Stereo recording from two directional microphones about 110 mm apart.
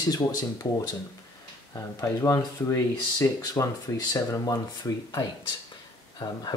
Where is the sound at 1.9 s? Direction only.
25° left (ahead or behind).